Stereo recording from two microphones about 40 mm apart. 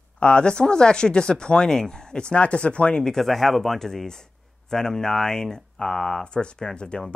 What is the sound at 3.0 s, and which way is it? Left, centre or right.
A man's voice, centre.